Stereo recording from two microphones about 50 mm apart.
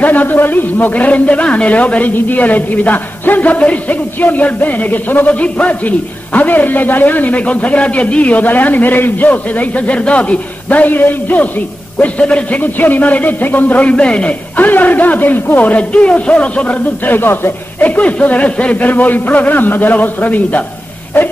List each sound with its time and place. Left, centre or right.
0.0 s a man's voice: left
12.0 s a man's voice: left
14.7 s a man's voice: left
17.8 s a man's voice: left